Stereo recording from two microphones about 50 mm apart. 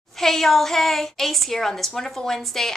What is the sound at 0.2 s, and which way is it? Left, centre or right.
A woman's voice, centre.